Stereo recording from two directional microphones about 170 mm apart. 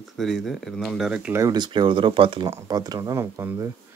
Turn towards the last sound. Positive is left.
turn(degrees=-15)  # may be behind; listen again after turning